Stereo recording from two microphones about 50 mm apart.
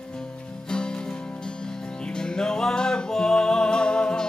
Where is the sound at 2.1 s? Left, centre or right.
Centre.